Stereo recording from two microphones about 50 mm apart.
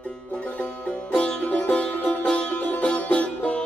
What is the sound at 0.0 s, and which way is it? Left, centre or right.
Music, left.